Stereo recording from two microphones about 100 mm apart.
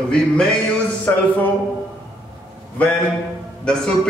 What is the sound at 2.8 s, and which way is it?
Speech, 15° left (ahead or behind).